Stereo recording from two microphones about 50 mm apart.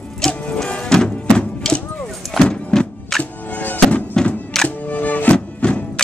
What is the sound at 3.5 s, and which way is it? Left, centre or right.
Music, left.